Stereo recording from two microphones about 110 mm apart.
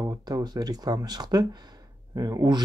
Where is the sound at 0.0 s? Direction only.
35° right (ahead or behind).